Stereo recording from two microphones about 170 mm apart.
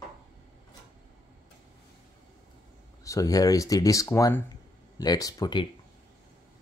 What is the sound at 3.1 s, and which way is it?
Speech, 20° left (ahead or behind).